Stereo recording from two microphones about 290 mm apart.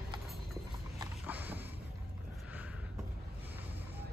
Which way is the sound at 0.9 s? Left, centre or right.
Centre.